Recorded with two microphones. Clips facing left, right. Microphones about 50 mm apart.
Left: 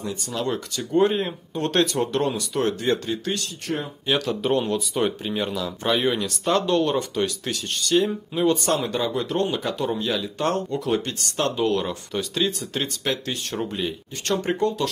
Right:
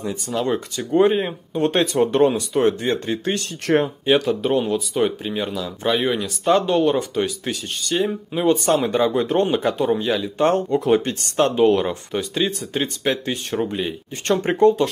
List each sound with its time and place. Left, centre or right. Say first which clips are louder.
0.0 s speech: right 4 dB; centre
3.6 s speech: right 11 dB; right
4.0 s speech: right 6 dB; right
4.3 s speech: right 3 dB; centre
10.4 s speech: right 7 dB; right
14.2 s speech: right 7 dB; right